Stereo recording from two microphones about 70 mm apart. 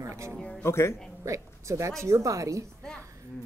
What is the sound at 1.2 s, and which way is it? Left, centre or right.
A woman's voice, right.